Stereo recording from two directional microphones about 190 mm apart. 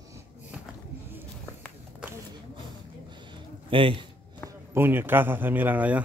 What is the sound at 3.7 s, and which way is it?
Speech, 25° right (ahead or behind).